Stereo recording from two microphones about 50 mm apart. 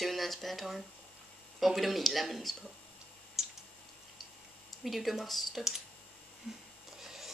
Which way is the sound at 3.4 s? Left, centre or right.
Centre.